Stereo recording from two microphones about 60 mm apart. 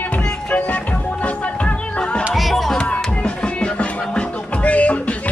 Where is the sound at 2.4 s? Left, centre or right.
Centre.